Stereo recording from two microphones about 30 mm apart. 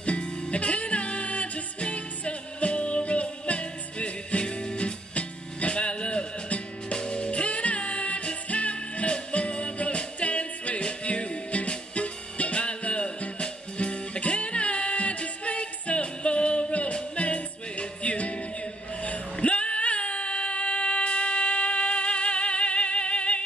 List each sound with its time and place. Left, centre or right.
0.2 s music: left
19.3 s female singing: left